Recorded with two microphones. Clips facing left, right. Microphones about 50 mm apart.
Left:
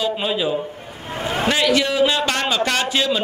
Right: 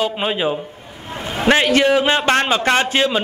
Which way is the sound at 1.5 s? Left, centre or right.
Right.